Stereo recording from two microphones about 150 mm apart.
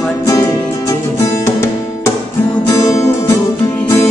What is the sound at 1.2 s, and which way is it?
Music, 20° left (ahead or behind).